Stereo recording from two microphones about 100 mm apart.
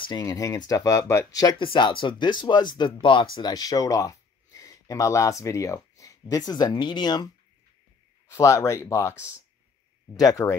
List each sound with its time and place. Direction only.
0.2 s speech: 35° left (ahead or behind)
1.6 s speech: 55° left (ahead or behind)
3.3 s speech: 45° left (ahead or behind)
8.3 s speech: 30° left (ahead or behind)